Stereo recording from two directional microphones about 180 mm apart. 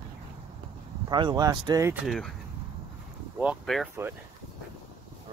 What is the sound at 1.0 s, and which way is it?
Speech, 25° right (ahead or behind).